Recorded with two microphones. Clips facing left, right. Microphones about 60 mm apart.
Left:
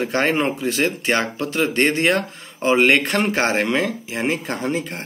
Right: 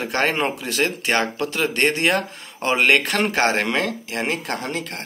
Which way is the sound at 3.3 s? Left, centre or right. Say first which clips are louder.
Left 1 dB; centre.